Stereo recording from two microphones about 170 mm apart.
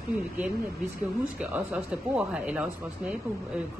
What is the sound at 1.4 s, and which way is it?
A woman's voice, 10° right (ahead or behind).